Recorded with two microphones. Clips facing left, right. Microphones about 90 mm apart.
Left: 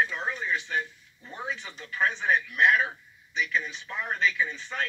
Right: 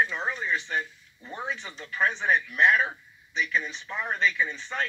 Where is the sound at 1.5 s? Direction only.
10° left (ahead or behind).